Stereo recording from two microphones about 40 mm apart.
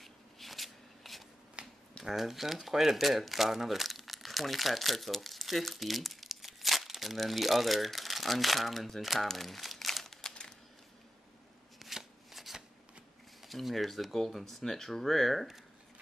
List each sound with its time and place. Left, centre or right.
0.0 s shuffling cards: centre
1.6 s a sound: right
2.0 s speech: centre
11.8 s shuffling cards: centre
13.4 s speech: centre